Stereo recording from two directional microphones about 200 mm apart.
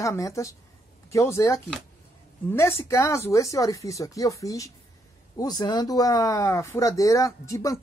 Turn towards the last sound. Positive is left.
turn(degrees=15)  # may be behind; listen again after turning